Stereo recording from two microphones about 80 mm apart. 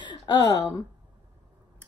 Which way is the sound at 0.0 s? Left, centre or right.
Left.